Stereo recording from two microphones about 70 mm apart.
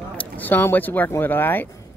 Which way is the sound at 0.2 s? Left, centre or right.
Left.